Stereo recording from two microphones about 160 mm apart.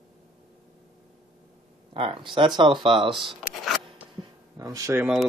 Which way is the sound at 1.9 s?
35° right (ahead or behind).